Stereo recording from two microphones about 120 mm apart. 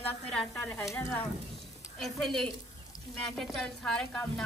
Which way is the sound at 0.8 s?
25° left (ahead or behind).